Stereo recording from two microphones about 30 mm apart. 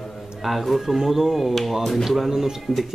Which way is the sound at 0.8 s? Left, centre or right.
Centre.